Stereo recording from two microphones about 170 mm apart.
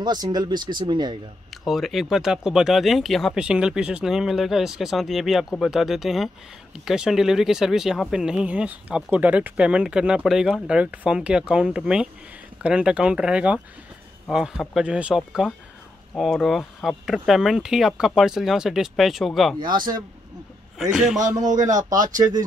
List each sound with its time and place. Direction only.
0.0 s speech: 25° right (ahead or behind)
1.5 s speech: centre (ahead or behind)
19.7 s speech: 25° right (ahead or behind)
20.9 s speech: 5° right (ahead or behind)
21.5 s speech: 45° right (ahead or behind)